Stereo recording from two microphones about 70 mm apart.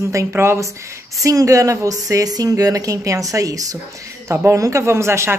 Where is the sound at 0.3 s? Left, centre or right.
Right.